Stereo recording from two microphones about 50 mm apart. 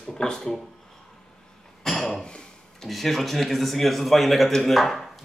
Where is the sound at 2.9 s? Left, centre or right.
Centre.